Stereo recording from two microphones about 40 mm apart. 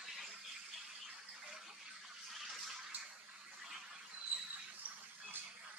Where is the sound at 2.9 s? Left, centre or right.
Right.